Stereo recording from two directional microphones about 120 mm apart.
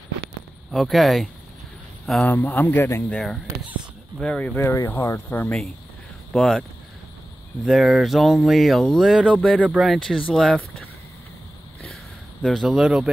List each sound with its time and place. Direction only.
0.7 s speech: centre (ahead or behind)
2.2 s speech: 15° left (ahead or behind)
4.2 s speech: 5° left (ahead or behind)
4.6 s speech: 20° left (ahead or behind)
6.3 s speech: centre (ahead or behind)
7.6 s speech: centre (ahead or behind)
9.7 s speech: centre (ahead or behind)
11.9 s a sound: 5° left (ahead or behind)